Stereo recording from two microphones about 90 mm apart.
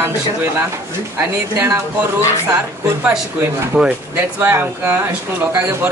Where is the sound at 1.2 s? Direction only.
25° right (ahead or behind).